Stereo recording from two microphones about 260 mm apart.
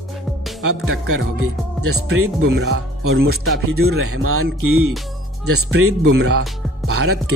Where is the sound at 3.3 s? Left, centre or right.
Right.